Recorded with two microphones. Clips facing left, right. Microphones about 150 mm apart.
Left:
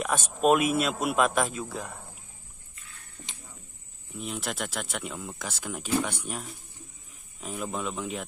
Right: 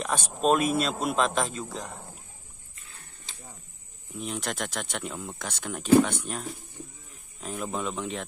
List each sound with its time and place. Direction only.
0.4 s a man's voice: 5° left (ahead or behind)
3.3 s a sound: 20° left (ahead or behind)
4.2 s a man's voice: centre (ahead or behind)